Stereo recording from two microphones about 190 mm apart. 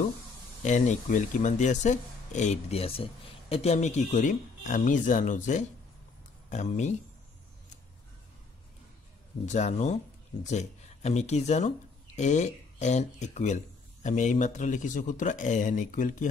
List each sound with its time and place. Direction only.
0.6 s speech: 40° left (ahead or behind)
9.5 s speech: 40° left (ahead or behind)